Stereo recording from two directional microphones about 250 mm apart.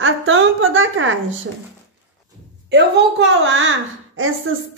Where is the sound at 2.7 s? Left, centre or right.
Right.